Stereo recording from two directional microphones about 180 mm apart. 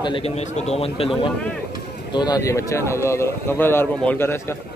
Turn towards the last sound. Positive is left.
turn(degrees=15)  # may be behind; listen again after turning